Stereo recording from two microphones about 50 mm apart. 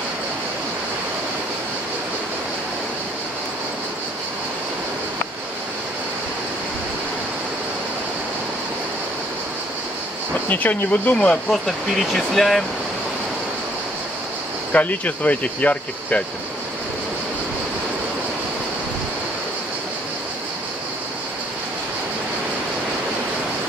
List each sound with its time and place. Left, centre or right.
10.5 s speech: left
11.5 s speech: centre
14.7 s speech: left